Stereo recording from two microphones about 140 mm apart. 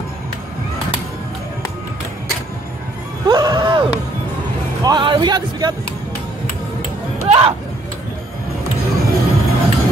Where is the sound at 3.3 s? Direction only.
30° right (ahead or behind).